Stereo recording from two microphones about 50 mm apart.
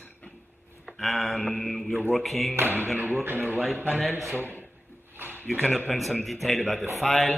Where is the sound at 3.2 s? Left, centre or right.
Right.